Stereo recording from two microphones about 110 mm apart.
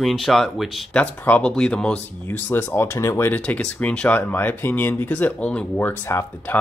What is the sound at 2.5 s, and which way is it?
Speech, 20° left (ahead or behind).